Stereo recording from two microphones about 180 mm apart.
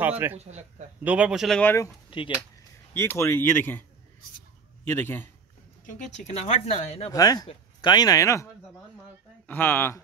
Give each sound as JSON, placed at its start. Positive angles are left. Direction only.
{"t": 0.4, "sound": "speech", "side_deg": -40}
{"t": 1.0, "sound": "speech", "side_deg": -5}
{"t": 2.0, "sound": "speech", "side_deg": 25}
{"t": 2.9, "sound": "speech", "side_deg": 15}
{"t": 4.8, "sound": "speech", "side_deg": 10}
{"t": 5.9, "sound": "speech", "side_deg": 45}
{"t": 7.1, "sound": "speech", "side_deg": 20}
{"t": 9.5, "sound": "speech", "side_deg": 10}